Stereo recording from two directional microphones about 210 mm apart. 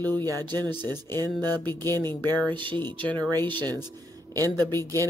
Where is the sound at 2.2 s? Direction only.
20° right (ahead or behind).